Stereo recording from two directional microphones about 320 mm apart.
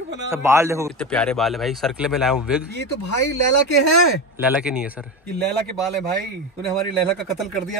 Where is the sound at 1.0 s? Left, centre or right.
Centre.